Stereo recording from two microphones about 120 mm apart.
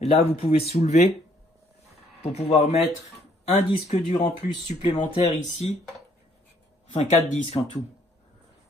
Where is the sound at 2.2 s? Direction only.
60° left (ahead or behind).